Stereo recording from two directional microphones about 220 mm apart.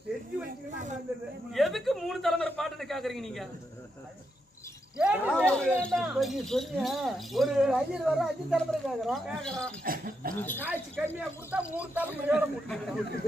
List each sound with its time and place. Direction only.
0.5 s snake: 35° right (ahead or behind)
1.5 s a sound: centre (ahead or behind)
4.9 s a sound: 5° right (ahead or behind)
5.4 s speech: 5° left (ahead or behind)
9.8 s speech: 40° right (ahead or behind)
10.3 s speech: 10° left (ahead or behind)
10.6 s a man's voice: 10° right (ahead or behind)